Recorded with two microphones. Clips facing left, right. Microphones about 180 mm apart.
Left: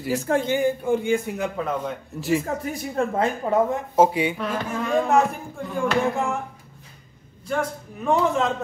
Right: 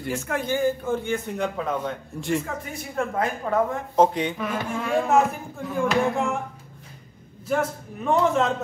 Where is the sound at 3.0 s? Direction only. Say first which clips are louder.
Left 2 dB; 25° left (ahead or behind).